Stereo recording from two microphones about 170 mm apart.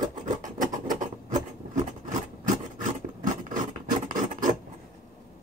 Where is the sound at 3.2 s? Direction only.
50° right (ahead or behind).